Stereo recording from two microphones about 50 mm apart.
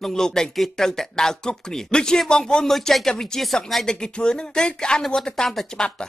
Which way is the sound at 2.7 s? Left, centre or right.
Centre.